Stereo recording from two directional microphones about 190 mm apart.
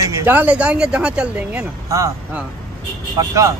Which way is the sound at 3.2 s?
15° right (ahead or behind).